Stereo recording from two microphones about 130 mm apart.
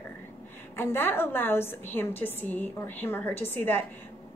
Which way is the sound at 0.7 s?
15° left (ahead or behind).